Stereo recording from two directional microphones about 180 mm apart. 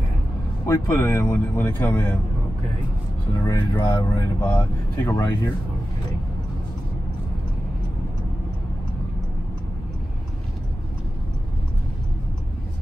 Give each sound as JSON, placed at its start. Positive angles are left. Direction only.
{"t": 0.7, "sound": "speech", "side_deg": 15}
{"t": 3.4, "sound": "speech", "side_deg": 20}